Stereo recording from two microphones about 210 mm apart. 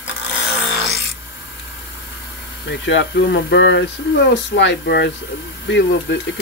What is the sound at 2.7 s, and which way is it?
Speech, 60° left (ahead or behind).